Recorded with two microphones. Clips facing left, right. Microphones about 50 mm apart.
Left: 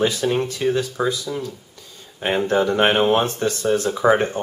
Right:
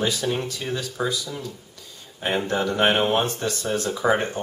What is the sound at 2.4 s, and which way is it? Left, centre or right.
Speech, left.